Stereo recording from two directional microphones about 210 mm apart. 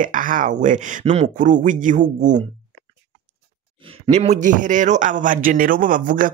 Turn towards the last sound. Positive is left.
turn(degrees=-40)  # may be behind; listen again after turning